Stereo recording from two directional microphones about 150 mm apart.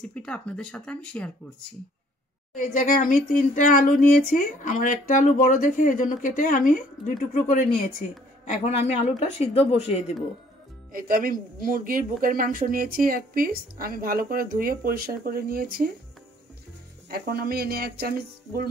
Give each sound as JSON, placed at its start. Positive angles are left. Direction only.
{"t": 0.0, "sound": "speech", "side_deg": 5}
{"t": 2.5, "sound": "speech", "side_deg": 60}
{"t": 8.5, "sound": "speech", "side_deg": 50}
{"t": 10.9, "sound": "speech", "side_deg": -70}
{"t": 17.1, "sound": "speech", "side_deg": -90}